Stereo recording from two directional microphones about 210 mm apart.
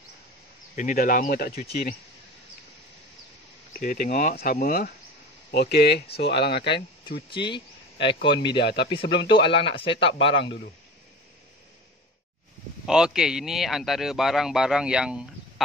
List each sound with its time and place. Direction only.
0.7 s speech: 40° left (ahead or behind)
3.7 s speech: 40° left (ahead or behind)
7.2 s speech: 25° left (ahead or behind)
8.5 s speech: 55° left (ahead or behind)
9.3 s speech: 25° left (ahead or behind)
12.8 s speech: 5° right (ahead or behind)